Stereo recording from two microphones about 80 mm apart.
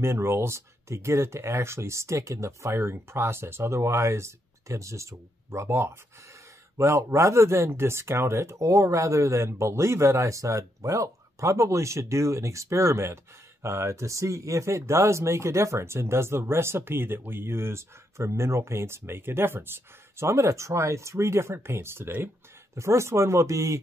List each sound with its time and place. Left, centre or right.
0.0 s speech: right